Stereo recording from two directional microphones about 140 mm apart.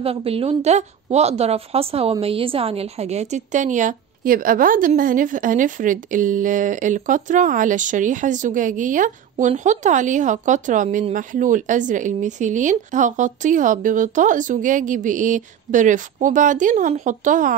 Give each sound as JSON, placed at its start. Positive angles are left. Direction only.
{"t": 0.0, "sound": "speech", "side_deg": -45}